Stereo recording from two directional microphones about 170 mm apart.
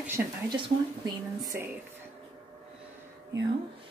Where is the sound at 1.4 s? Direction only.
15° right (ahead or behind).